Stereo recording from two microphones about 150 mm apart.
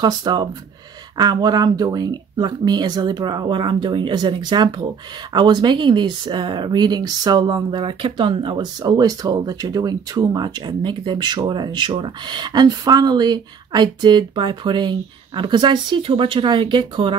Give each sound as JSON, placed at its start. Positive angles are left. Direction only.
{"t": 0.0, "sound": "speech", "side_deg": -30}